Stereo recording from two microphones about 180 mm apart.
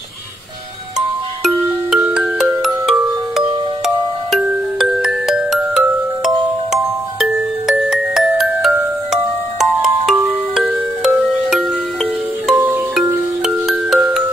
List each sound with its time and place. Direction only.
0.9 s glockenspiel: centre (ahead or behind)
10.5 s music: 5° right (ahead or behind)